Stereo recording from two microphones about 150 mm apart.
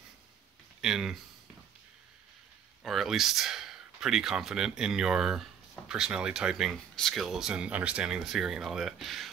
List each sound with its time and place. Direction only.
0.7 s speech: 5° right (ahead or behind)
2.8 s speech: centre (ahead or behind)